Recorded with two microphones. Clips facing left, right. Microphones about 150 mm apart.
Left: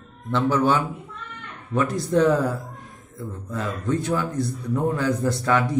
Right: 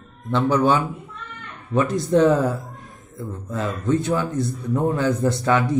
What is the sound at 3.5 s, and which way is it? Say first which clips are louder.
A man's voice: right 3 dB; 25° right (ahead or behind).